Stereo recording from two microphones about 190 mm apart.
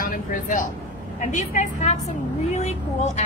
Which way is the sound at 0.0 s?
45° left (ahead or behind).